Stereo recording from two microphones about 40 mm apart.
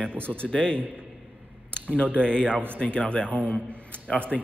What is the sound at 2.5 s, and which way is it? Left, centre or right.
Speech, right.